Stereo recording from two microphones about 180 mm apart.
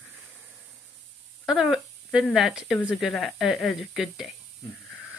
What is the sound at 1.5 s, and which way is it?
Speech, centre (ahead or behind).